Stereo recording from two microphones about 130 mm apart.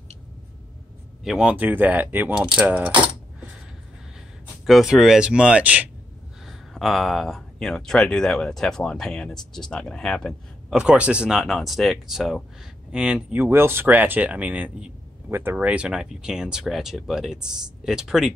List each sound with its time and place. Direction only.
1.2 s speech: 5° right (ahead or behind)
4.6 s speech: centre (ahead or behind)
10.8 s speech: 10° right (ahead or behind)